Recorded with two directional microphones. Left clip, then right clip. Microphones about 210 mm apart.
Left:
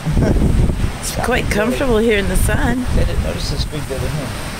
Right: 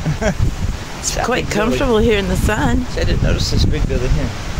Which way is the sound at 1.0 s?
5° right (ahead or behind).